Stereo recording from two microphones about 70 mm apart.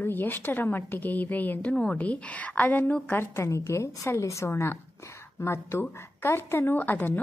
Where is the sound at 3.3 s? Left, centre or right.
Left.